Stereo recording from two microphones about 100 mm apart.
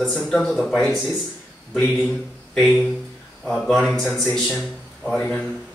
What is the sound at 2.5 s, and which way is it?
Speech, centre (ahead or behind).